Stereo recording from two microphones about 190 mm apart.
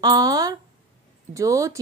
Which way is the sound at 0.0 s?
20° right (ahead or behind).